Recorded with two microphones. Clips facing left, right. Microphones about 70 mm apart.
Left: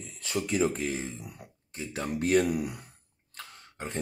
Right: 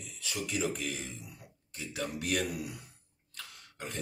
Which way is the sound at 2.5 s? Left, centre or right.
Left.